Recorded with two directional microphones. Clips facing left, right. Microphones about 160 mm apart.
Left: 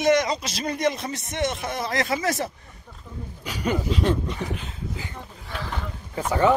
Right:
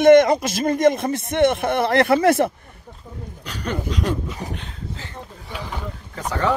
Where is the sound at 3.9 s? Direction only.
Centre (ahead or behind).